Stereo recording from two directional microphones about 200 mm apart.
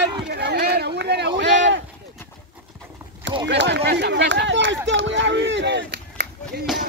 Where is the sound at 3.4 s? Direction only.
60° right (ahead or behind).